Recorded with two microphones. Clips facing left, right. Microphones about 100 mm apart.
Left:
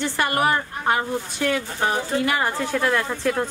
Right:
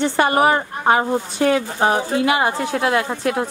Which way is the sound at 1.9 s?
20° right (ahead or behind).